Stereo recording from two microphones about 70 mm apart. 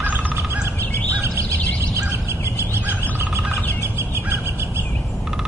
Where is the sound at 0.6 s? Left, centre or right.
Right.